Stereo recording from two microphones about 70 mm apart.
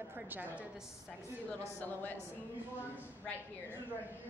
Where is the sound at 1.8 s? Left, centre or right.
Left.